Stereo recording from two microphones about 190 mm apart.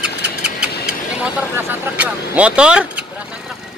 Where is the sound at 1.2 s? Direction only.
10° right (ahead or behind).